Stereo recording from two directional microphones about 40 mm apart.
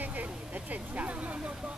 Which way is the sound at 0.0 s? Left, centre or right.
Right.